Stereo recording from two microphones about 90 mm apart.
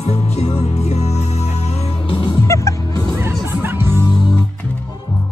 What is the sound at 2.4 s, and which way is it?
Music, 35° left (ahead or behind).